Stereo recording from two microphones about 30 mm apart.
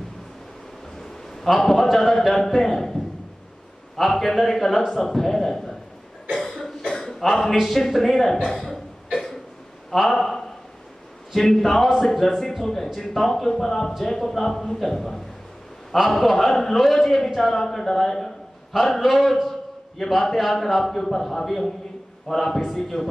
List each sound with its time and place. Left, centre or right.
0.9 s a sound: centre
3.9 s a man's voice: centre
6.3 s cough: centre
6.8 s cough: centre
7.7 s a man's voice: centre
8.5 s cough: centre
10.0 s a man's voice: centre